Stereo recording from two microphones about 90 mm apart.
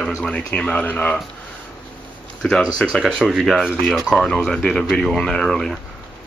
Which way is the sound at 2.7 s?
5° left (ahead or behind).